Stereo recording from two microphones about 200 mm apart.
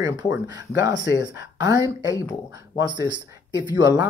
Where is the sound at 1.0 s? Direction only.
60° left (ahead or behind).